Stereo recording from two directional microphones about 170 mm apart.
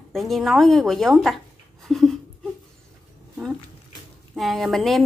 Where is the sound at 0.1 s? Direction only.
Centre (ahead or behind).